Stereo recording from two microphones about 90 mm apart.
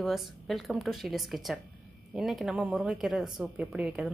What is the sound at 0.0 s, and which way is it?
A woman's voice, centre (ahead or behind).